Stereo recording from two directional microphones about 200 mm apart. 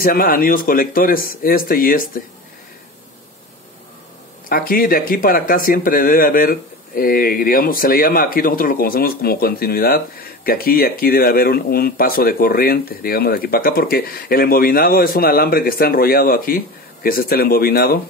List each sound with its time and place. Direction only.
0.0 s speech: 45° left (ahead or behind)
4.5 s speech: 45° left (ahead or behind)